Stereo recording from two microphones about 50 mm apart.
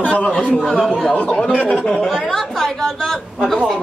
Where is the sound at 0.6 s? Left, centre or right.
Centre.